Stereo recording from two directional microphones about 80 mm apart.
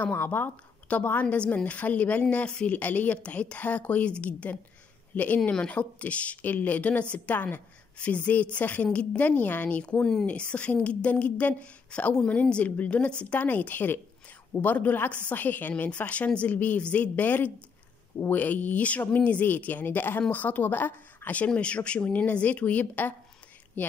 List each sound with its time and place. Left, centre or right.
0.0 s a woman's voice: left